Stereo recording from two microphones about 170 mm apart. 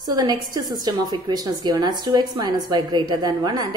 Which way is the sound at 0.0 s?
25° right (ahead or behind).